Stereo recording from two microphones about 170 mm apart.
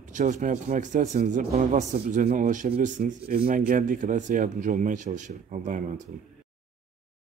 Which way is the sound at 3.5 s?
55° right (ahead or behind).